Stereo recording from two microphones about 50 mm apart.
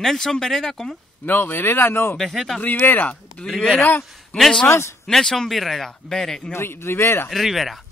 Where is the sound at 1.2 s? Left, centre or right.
Left.